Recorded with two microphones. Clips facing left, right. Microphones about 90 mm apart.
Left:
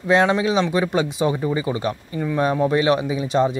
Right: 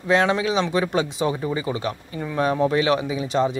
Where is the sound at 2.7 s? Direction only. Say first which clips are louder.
Left 2 dB; 30° left (ahead or behind).